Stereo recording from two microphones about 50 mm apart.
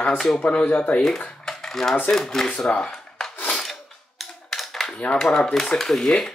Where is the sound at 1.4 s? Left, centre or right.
Centre.